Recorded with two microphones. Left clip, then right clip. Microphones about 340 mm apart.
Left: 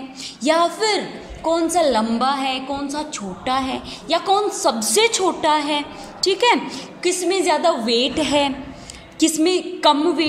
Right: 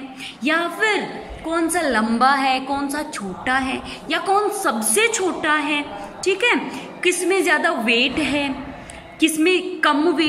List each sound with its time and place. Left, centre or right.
0.4 s a woman's voice: centre